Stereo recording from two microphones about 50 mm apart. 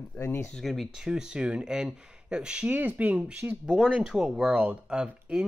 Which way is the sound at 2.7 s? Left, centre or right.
Right.